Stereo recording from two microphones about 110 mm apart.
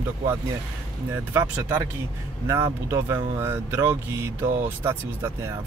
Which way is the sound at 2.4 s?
25° right (ahead or behind).